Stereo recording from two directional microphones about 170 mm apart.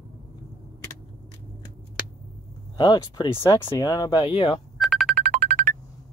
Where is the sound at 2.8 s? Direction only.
25° left (ahead or behind).